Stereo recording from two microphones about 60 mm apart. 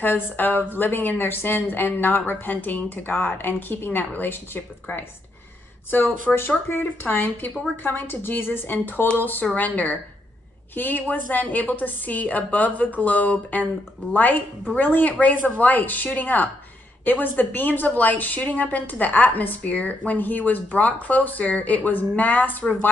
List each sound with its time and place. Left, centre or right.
0.0 s a woman's voice: left
5.9 s a woman's voice: left